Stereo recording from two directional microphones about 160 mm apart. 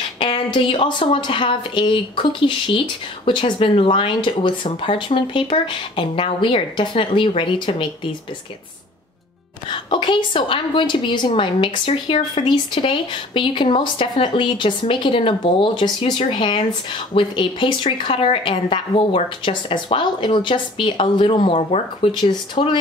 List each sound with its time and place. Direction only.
0.2 s a woman's voice: 35° left (ahead or behind)
9.7 s a woman's voice: 30° left (ahead or behind)